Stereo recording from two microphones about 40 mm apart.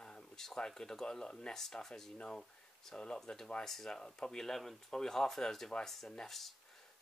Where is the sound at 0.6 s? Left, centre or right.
Centre.